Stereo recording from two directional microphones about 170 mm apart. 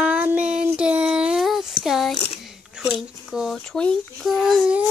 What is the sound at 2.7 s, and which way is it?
Speech, 5° right (ahead or behind).